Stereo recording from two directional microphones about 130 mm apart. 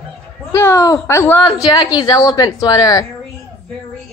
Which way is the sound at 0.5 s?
25° left (ahead or behind).